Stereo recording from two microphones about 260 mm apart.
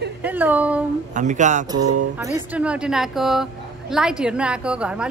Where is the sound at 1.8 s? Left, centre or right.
Right.